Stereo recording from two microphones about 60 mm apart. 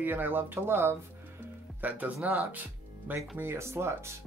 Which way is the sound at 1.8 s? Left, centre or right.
Right.